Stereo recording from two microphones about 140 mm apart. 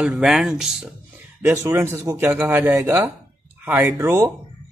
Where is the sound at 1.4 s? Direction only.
15° right (ahead or behind).